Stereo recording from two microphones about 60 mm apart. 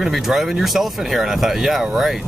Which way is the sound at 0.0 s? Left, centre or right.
Centre.